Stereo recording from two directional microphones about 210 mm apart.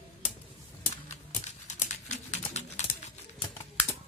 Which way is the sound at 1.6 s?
35° left (ahead or behind).